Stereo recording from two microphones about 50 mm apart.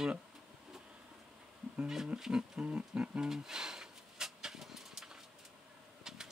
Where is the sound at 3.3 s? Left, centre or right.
Centre.